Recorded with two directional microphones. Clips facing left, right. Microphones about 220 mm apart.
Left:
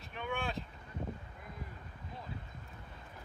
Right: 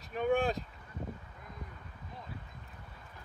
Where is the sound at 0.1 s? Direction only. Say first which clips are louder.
Right 9 dB; 40° right (ahead or behind).